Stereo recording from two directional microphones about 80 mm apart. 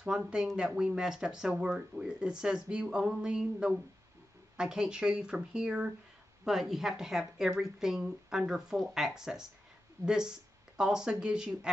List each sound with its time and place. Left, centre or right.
0.0 s speech: centre